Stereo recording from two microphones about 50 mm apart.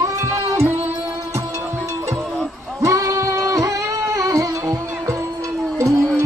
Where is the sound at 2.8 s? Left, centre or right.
Right.